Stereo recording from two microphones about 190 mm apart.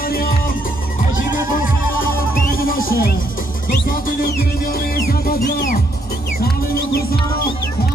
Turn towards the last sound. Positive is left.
turn(degrees=55)  # may be behind; listen again after turning